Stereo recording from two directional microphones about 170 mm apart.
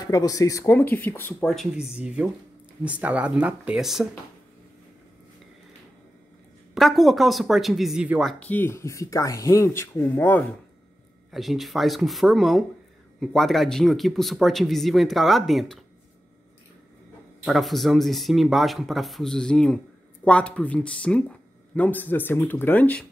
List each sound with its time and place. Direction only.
0.0 s speech: 20° left (ahead or behind); by 4.1 s centre (ahead or behind)
6.7 s speech: centre (ahead or behind)
11.3 s speech: centre (ahead or behind)
17.5 s speech: centre (ahead or behind)